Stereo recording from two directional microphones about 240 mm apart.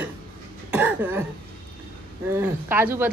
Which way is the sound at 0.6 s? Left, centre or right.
Centre.